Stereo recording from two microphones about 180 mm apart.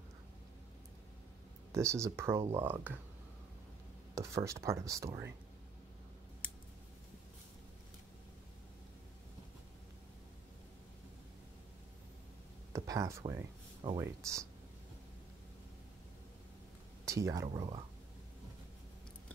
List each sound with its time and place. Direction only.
1.7 s speech: 15° right (ahead or behind)
4.1 s speech: 15° right (ahead or behind)
12.7 s speech: 20° right (ahead or behind)
17.0 s speech: 15° right (ahead or behind)